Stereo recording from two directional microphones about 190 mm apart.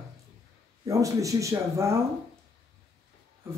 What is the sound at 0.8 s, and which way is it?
Speech, 15° right (ahead or behind).